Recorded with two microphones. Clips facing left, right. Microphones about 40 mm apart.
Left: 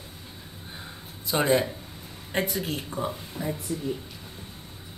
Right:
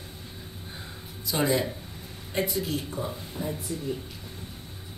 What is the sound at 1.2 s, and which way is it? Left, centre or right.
A man's voice, left.